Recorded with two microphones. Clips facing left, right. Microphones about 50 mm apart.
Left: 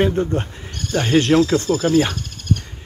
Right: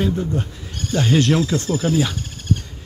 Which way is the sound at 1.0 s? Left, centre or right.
Left.